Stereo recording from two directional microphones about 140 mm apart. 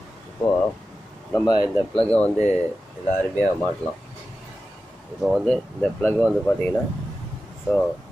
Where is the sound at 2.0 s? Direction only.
10° left (ahead or behind).